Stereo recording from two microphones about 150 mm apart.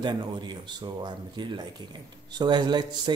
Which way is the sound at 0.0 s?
30° right (ahead or behind).